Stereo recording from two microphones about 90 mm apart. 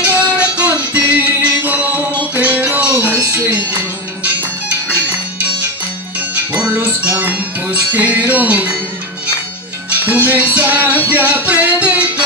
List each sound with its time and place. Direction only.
0.0 s music: 15° right (ahead or behind)
6.3 s music: 15° right (ahead or behind)
9.8 s music: 20° right (ahead or behind)